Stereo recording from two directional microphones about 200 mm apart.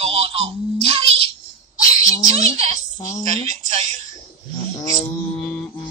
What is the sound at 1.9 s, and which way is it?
A child's voice, 30° right (ahead or behind).